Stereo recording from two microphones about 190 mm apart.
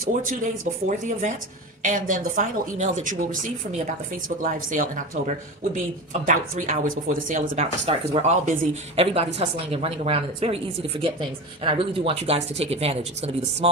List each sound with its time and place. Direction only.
0.0 s a woman's voice: 50° right (ahead or behind); by 13.7 s 35° right (ahead or behind)